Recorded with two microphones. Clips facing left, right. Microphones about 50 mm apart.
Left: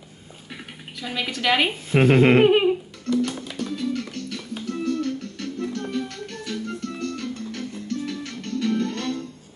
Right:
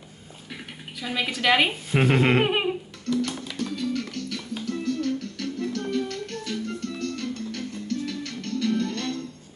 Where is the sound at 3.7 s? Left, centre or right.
Centre.